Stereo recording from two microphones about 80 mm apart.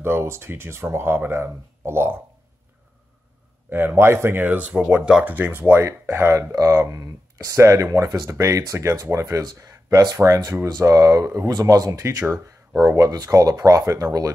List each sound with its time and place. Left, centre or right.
0.0 s speech: right
3.7 s speech: right
6.5 s speech: right